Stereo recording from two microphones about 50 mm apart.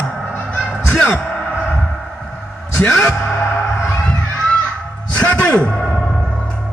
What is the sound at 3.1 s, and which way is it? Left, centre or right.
Music, left.